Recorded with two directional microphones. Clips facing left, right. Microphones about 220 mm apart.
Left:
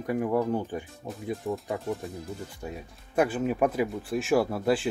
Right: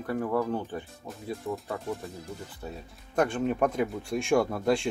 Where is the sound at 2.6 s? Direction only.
10° left (ahead or behind).